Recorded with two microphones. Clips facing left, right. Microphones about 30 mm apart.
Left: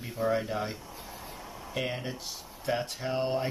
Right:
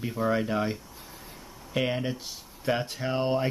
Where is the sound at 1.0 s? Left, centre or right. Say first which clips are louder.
Left 3 dB; centre.